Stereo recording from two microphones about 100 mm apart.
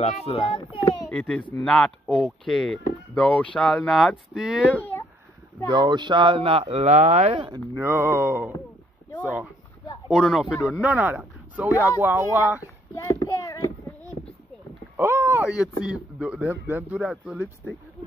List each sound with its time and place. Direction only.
0.0 s a child's voice: 90° left
1.1 s speech: 10° left (ahead or behind)
1.6 s speech: 5° left (ahead or behind)
4.7 s a sound: 20° left (ahead or behind)
5.7 s speech: 45° right (ahead or behind); by 7.4 s 90° right
7.8 s a sound: 25° right (ahead or behind)
9.2 s speech: 15° right (ahead or behind)
10.0 s speech: centre (ahead or behind)
10.8 s speech: 15° right (ahead or behind)
12.0 s a sound: 25° right (ahead or behind)
12.9 s child singing: 30° left (ahead or behind)
15.0 s a sound: 25° right (ahead or behind)
15.4 s speech: 5° right (ahead or behind)